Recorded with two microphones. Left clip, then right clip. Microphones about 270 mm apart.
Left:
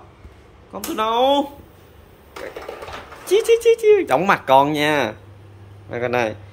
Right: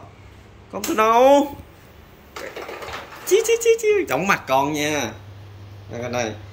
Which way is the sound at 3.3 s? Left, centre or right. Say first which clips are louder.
Left 2 dB; centre.